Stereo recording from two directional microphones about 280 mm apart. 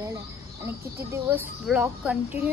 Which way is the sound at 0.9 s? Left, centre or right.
Centre.